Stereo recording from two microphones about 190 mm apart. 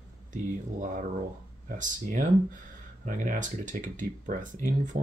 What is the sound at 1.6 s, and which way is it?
Speech, 45° right (ahead or behind).